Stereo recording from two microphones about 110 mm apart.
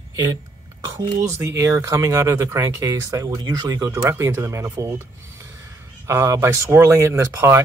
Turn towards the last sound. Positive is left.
turn(degrees=-25)  # may be behind; listen again after turning